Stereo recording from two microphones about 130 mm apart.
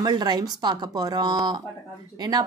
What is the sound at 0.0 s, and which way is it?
A child's voice, 30° right (ahead or behind).